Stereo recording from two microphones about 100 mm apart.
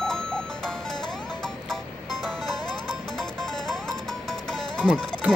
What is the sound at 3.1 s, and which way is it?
Music, 5° left (ahead or behind).